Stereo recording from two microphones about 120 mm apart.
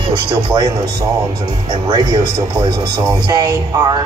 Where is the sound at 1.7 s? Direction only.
35° right (ahead or behind).